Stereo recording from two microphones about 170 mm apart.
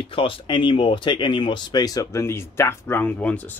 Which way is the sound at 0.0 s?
30° left (ahead or behind).